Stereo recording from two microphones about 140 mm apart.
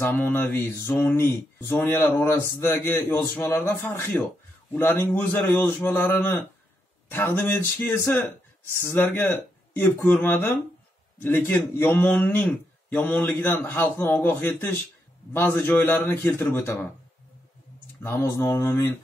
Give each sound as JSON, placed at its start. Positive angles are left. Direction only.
{"t": 0.0, "sound": "a man's voice", "side_deg": 15}
{"t": 18.0, "sound": "a man's voice", "side_deg": 20}